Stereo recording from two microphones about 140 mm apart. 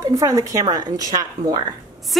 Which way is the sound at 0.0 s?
25° right (ahead or behind).